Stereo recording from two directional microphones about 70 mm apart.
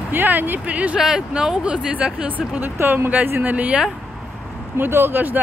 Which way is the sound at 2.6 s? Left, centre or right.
Right.